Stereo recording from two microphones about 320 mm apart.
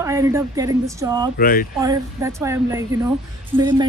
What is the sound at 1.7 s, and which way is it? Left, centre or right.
Speech, centre.